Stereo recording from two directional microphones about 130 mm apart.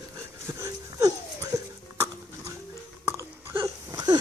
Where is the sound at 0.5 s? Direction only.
25° right (ahead or behind).